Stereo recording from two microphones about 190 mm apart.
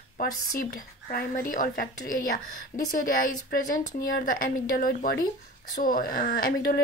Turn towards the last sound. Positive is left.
turn(degrees=55)  # may be behind; listen again after turning